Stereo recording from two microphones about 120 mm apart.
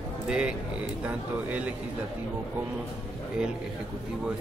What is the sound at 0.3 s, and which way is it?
Speech, 5° right (ahead or behind).